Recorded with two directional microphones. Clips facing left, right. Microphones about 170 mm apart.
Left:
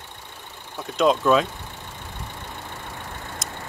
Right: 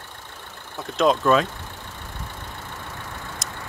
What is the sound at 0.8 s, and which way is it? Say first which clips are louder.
Speech: even; centre (ahead or behind).